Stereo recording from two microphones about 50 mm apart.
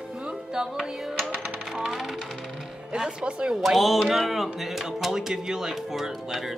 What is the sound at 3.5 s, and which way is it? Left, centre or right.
Speech, centre.